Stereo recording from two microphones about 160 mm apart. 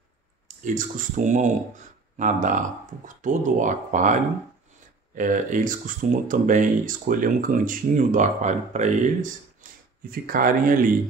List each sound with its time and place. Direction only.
0.7 s speech: 55° right (ahead or behind)